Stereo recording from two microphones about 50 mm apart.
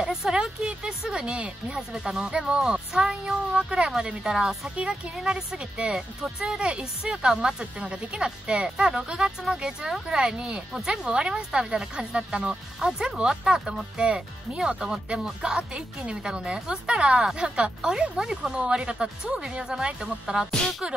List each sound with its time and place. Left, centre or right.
0.0 s speech: centre
4.6 s speech: right
15.5 s speech: centre